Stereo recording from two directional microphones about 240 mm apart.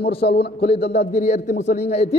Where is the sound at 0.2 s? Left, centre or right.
Left.